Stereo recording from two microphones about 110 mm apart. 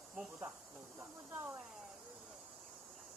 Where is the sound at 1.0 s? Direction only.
20° right (ahead or behind).